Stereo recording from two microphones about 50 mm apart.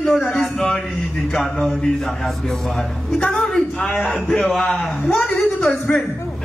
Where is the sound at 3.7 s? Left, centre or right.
Centre.